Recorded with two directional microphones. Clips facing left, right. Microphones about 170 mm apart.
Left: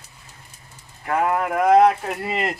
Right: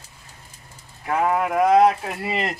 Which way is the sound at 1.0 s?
5° right (ahead or behind).